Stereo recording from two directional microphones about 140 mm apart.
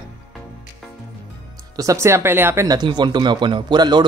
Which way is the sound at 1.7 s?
20° right (ahead or behind).